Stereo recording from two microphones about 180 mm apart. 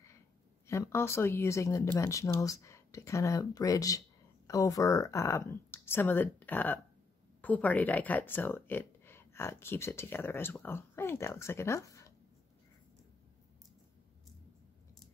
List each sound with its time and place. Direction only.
0.7 s speech: 15° left (ahead or behind)